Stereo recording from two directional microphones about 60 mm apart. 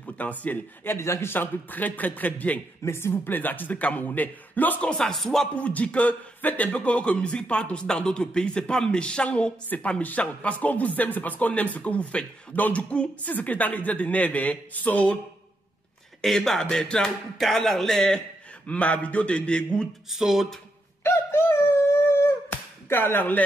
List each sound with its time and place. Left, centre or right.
0.0 s speech: left
0.9 s a man's voice: left
1.3 s a man's voice: left
2.8 s a man's voice: left
4.8 s speech: centre
5.5 s a man's voice: left
16.2 s speech: centre
18.7 s a man's voice: left
20.1 s a sound: centre
21.0 s a sound: left